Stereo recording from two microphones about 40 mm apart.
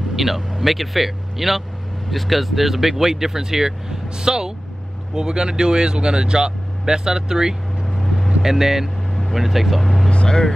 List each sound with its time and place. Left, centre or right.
0.1 s speech: centre
7.8 s vehicle: centre
8.4 s speech: centre
10.0 s speech: centre